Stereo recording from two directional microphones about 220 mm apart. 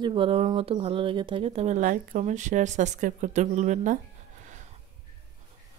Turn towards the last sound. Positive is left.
turn(degrees=-35)  # may be behind; listen again after turning